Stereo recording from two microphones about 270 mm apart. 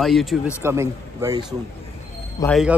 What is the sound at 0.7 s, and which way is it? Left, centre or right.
Speech, centre.